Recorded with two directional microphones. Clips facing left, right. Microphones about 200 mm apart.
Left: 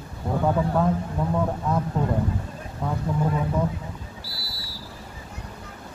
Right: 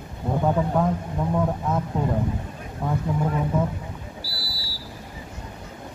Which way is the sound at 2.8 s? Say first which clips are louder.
Right 2 dB; 10° right (ahead or behind).